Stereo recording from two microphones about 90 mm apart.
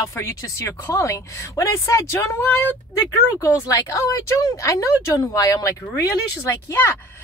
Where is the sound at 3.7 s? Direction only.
35° left (ahead or behind).